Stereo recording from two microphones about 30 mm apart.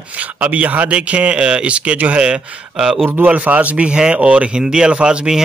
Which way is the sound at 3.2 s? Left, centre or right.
Right.